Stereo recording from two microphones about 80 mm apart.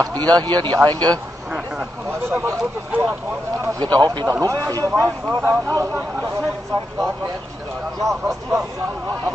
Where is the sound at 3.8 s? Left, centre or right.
Right.